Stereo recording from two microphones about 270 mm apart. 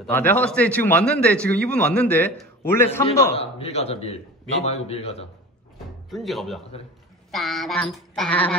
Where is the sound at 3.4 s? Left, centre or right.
Left.